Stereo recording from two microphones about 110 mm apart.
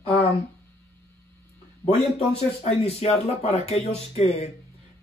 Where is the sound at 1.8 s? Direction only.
65° left (ahead or behind).